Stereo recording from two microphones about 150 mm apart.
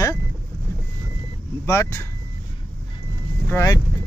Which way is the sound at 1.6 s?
20° left (ahead or behind).